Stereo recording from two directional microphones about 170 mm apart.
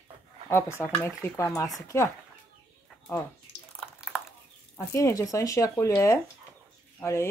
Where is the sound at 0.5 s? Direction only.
15° left (ahead or behind).